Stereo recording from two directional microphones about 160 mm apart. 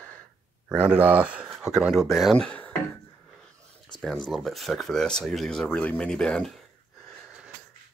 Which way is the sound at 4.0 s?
Centre (ahead or behind).